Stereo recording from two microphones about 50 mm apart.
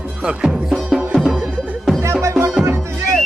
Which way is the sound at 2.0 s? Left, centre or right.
Right.